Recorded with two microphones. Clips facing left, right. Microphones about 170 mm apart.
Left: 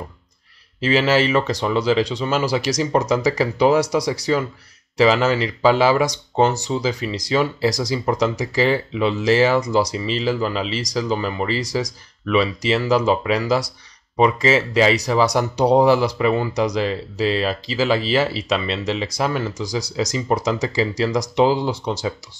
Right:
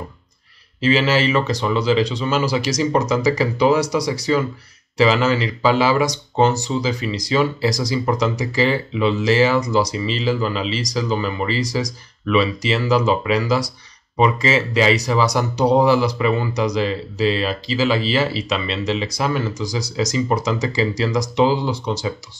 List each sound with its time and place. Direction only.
0.8 s speech: 50° left (ahead or behind)
20.2 s speech: 45° left (ahead or behind)